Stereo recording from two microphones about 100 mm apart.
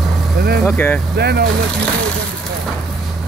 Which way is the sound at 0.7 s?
15° left (ahead or behind).